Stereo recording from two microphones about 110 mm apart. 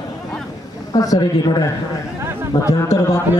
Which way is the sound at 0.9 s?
35° left (ahead or behind).